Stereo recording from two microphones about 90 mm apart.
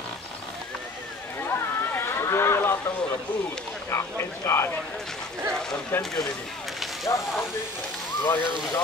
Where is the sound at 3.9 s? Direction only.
30° left (ahead or behind).